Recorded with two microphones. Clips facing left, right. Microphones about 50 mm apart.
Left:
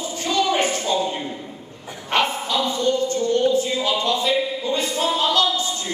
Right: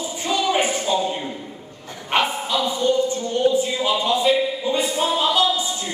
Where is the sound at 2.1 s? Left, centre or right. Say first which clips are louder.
Even; centre.